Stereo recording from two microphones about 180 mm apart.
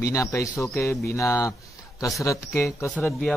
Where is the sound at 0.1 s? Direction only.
15° left (ahead or behind).